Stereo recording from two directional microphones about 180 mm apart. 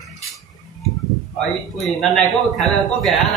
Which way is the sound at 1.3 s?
Centre (ahead or behind).